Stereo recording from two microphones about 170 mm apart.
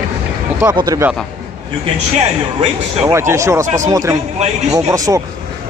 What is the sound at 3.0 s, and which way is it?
A man's voice, 15° right (ahead or behind).